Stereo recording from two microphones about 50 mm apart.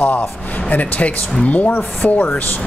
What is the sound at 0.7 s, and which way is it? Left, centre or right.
Speech, left.